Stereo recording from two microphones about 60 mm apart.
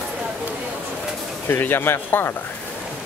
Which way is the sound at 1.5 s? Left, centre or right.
Left.